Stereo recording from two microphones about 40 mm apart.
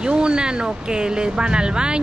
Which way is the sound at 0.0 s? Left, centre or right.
Right.